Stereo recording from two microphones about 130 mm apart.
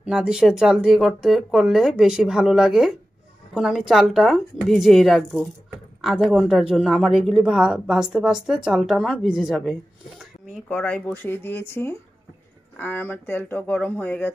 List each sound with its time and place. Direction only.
0.0 s a woman's voice: 5° right (ahead or behind); by 14.3 s 15° left (ahead or behind)